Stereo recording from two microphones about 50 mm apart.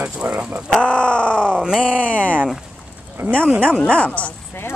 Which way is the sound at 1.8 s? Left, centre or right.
Left.